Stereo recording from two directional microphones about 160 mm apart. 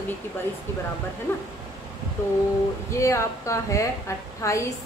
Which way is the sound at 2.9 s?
20° left (ahead or behind).